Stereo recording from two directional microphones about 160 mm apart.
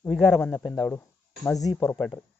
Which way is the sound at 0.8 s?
15° left (ahead or behind).